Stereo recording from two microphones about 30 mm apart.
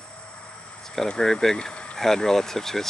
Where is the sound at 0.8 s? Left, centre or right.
Centre.